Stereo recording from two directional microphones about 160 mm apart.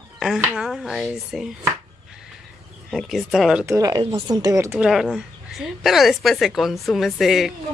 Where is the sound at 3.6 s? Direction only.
20° right (ahead or behind).